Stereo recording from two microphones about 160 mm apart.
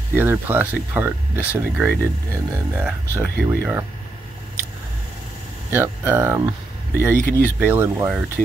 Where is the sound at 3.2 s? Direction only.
15° right (ahead or behind).